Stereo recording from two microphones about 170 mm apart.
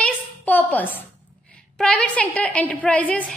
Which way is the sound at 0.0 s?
10° left (ahead or behind).